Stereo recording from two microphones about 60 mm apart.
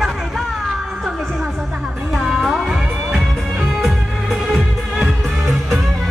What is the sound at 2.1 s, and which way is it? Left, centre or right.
Music, centre.